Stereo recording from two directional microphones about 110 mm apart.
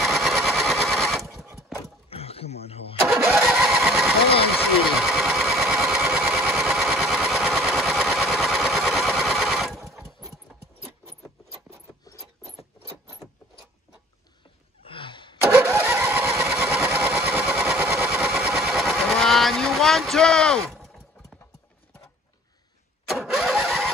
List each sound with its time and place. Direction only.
0.0 s sewing machine: centre (ahead or behind)
2.0 s a sound: 65° left (ahead or behind)
3.4 s engine: 5° right (ahead or behind)
4.9 s sewing machine: centre (ahead or behind)
5.4 s engine: centre (ahead or behind)
14.9 s a sound: 50° left (ahead or behind)
15.4 s vehicle: 20° right (ahead or behind)
16.4 s engine: 20° right (ahead or behind)
18.3 s vehicle: 15° right (ahead or behind); by 20.9 s 5° left (ahead or behind)
23.0 s engine starting: centre (ahead or behind)